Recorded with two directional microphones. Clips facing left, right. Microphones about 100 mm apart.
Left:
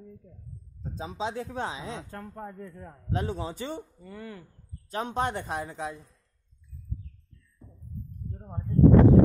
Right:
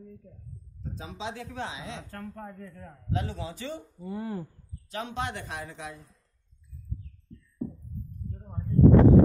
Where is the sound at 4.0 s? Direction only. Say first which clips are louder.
Right 7 dB; 25° right (ahead or behind).